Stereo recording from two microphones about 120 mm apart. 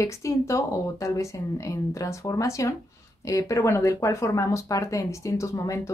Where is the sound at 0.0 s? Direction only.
25° left (ahead or behind).